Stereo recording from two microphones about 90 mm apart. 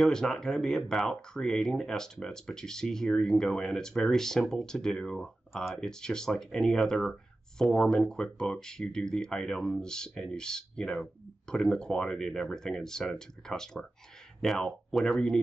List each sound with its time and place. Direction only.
0.0 s speech: 5° left (ahead or behind)